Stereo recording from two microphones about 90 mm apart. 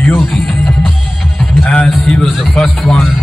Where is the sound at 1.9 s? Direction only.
5° left (ahead or behind).